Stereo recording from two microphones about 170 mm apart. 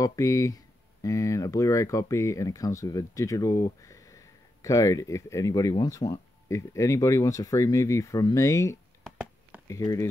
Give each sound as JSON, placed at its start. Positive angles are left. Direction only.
{"t": 0.0, "sound": "speech", "side_deg": 20}
{"t": 9.0, "sound": "a sound", "side_deg": 0}
{"t": 9.7, "sound": "speech", "side_deg": 20}